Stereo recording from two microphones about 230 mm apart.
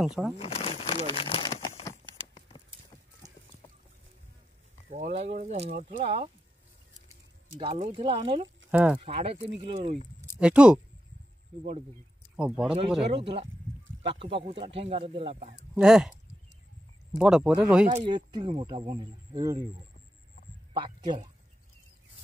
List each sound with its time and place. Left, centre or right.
0.0 s speech: centre
0.4 s crumpling: left
4.8 s speech: right
7.5 s speech: right
8.6 s speech: centre
9.0 s speech: right
10.4 s speech: centre
12.4 s speech: centre
13.1 s speech: right
15.3 s speech: right
15.7 s speech: centre
17.2 s speech: centre
17.8 s speech: right
20.7 s speech: centre